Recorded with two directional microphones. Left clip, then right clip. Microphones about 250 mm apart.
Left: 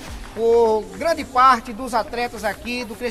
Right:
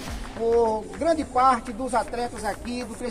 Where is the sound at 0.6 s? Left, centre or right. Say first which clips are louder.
Left 4 dB; left.